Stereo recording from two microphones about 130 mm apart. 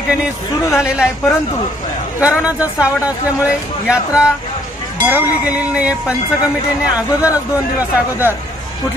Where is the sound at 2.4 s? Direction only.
10° right (ahead or behind).